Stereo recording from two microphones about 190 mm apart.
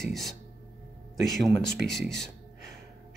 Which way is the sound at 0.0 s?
Centre (ahead or behind).